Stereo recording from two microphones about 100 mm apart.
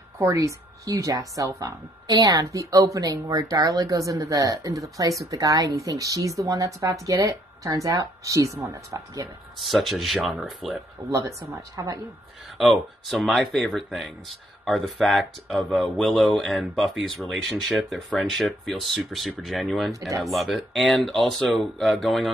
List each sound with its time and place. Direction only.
0.3 s speech: 35° right (ahead or behind)
9.6 s speech: centre (ahead or behind)
11.1 s speech: 30° right (ahead or behind)
12.5 s speech: centre (ahead or behind)